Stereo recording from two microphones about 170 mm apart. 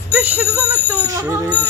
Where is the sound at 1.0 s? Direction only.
20° right (ahead or behind).